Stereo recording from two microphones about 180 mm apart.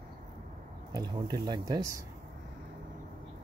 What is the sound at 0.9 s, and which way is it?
Speech, 25° right (ahead or behind).